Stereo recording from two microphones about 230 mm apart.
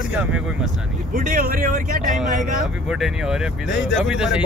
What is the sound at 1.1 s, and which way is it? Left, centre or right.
Speech, right.